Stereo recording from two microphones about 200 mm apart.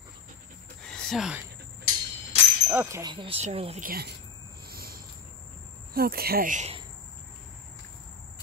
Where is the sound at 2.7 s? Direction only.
15° right (ahead or behind); by 3.8 s 30° right (ahead or behind).